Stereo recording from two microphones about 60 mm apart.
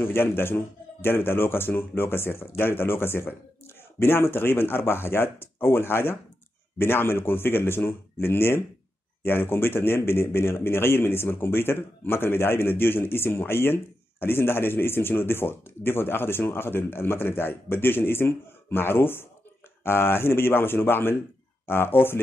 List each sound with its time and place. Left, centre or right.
0.0 s speech: left